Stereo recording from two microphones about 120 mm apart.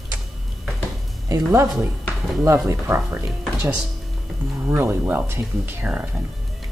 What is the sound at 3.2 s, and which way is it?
Speech, 5° right (ahead or behind).